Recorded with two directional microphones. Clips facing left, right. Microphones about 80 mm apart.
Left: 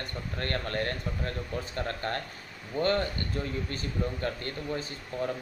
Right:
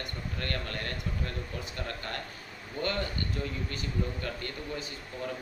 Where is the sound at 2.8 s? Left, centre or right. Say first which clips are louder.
Left 5 dB; left.